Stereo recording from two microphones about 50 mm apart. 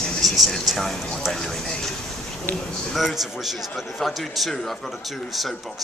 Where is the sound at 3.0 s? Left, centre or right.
Centre.